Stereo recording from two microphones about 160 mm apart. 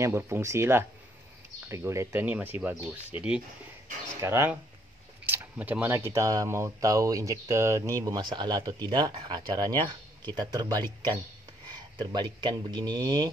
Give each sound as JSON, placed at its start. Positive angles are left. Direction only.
{"t": 0.0, "sound": "speech", "side_deg": -15}